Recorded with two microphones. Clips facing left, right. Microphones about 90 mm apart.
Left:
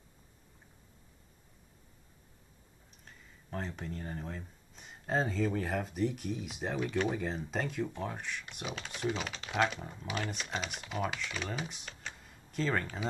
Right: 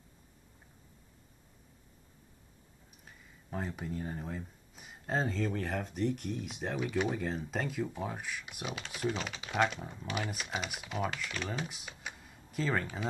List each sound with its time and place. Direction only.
3.1 s speech: 5° right (ahead or behind)